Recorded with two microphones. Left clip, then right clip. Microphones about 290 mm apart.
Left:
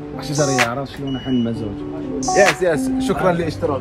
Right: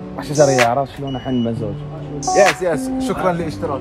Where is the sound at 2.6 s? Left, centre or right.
Centre.